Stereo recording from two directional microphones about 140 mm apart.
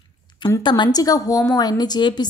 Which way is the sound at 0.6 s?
30° left (ahead or behind).